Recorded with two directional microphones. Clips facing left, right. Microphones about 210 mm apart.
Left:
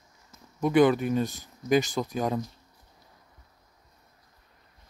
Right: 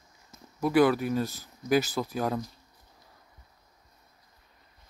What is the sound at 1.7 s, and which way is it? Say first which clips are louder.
Speech: left 1 dB; 5° right (ahead or behind).